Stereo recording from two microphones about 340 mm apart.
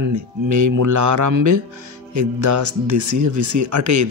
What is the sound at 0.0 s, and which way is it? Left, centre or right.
Speech, right.